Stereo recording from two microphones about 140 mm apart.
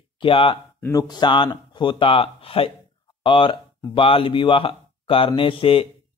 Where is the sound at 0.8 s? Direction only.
25° left (ahead or behind).